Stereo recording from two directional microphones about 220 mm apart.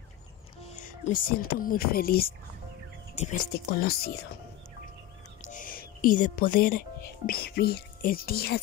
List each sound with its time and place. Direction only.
0.7 s speech: 35° left (ahead or behind)
5.5 s music: 40° left (ahead or behind)
7.2 s speech: 45° left (ahead or behind)